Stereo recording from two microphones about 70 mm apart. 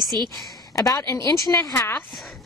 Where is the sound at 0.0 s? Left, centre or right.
Right.